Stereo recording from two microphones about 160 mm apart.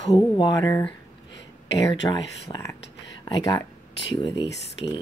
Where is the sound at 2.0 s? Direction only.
25° left (ahead or behind).